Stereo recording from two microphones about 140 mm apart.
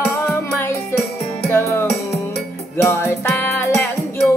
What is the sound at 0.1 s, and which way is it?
Music, 20° left (ahead or behind).